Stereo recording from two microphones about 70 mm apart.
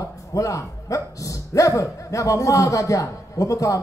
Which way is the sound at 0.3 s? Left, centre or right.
Left.